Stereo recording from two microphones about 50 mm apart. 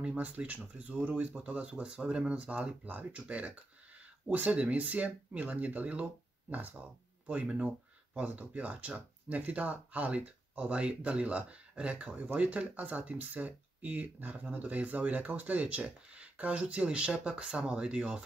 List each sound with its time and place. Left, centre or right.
0.2 s speech: right